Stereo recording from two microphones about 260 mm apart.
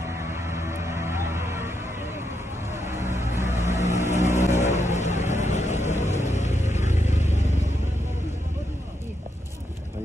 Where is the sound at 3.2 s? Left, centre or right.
Centre.